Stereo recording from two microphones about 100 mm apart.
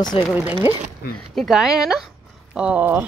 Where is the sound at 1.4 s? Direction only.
5° right (ahead or behind).